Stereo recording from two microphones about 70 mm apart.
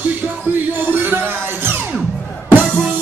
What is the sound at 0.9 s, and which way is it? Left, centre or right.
Music, right.